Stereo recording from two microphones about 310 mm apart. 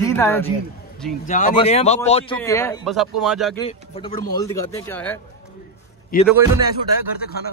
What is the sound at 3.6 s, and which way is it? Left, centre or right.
Speech, centre.